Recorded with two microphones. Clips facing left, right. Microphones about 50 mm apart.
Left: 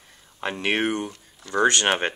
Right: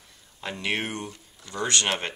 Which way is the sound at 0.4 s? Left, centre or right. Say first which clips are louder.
Left 5 dB; left.